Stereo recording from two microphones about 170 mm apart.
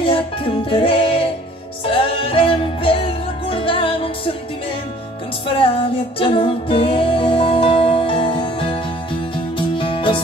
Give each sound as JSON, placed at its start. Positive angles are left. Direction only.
{"t": 0.0, "sound": "music", "side_deg": 30}
{"t": 5.6, "sound": "music", "side_deg": 30}